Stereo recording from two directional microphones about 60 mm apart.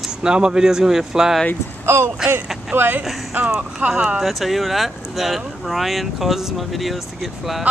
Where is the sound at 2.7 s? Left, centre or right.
Right.